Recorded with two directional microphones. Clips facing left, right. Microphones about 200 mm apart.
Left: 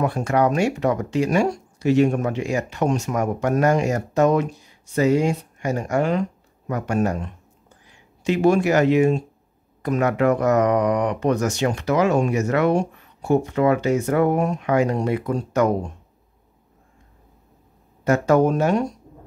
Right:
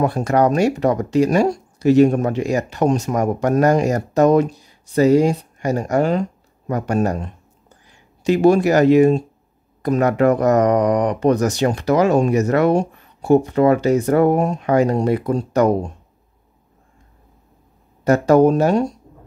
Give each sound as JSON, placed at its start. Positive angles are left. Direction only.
{"t": 0.0, "sound": "speech", "side_deg": -35}
{"t": 18.0, "sound": "speech", "side_deg": -35}